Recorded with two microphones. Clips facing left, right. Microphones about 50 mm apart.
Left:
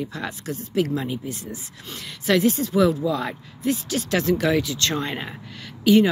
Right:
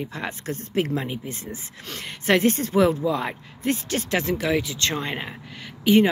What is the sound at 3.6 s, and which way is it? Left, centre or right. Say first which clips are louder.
Speech: left 1 dB; right.